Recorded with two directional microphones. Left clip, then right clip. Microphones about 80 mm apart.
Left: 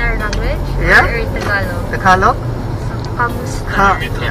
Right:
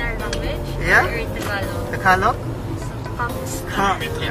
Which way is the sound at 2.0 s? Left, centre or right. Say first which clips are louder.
Left 6 dB; right.